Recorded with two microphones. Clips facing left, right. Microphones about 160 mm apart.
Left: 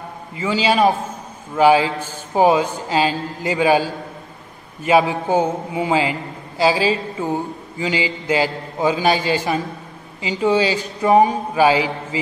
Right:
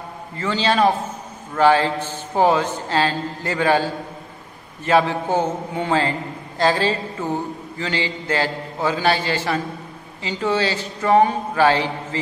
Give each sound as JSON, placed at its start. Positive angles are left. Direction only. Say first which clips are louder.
{"t": 0.4, "sound": "a man's voice", "louder": "left 2 dB", "side_deg": 10}